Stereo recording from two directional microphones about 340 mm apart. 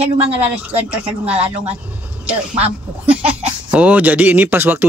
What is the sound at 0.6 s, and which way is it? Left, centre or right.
Speech, centre.